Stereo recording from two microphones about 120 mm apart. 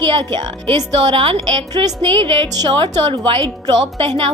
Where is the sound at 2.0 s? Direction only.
45° right (ahead or behind).